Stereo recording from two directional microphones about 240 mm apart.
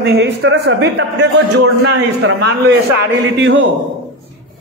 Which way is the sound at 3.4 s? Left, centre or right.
Right.